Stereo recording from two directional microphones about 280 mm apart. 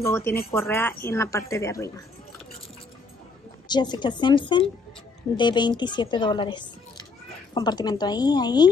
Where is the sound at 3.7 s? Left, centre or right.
Centre.